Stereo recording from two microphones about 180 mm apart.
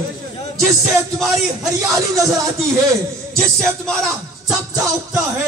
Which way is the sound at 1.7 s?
20° right (ahead or behind).